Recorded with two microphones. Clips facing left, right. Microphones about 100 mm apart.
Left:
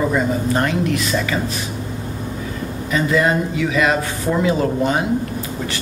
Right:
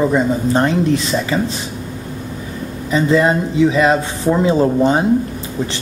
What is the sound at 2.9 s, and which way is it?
Speech, 25° right (ahead or behind).